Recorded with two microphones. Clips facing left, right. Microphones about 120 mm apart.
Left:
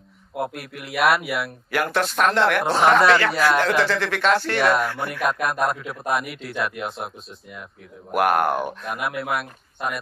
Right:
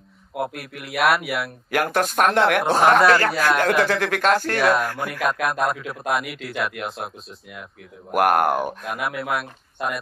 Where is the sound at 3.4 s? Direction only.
50° right (ahead or behind).